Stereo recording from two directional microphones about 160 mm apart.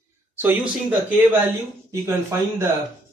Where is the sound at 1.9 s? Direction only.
15° right (ahead or behind).